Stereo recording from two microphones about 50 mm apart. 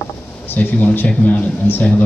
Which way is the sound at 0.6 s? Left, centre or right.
Left.